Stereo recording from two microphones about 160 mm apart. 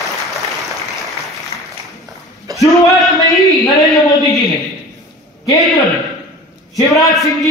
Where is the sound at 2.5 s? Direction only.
20° right (ahead or behind).